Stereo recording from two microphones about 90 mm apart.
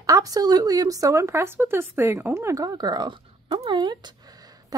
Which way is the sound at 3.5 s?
60° right (ahead or behind).